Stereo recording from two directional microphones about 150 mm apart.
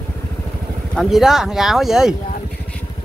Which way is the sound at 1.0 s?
Centre (ahead or behind).